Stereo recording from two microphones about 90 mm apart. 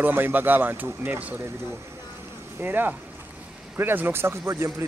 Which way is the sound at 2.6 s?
20° right (ahead or behind).